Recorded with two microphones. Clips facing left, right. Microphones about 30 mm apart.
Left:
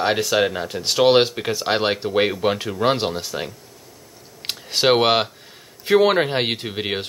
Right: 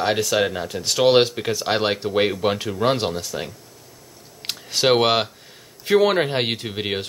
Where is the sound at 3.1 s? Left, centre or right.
Centre.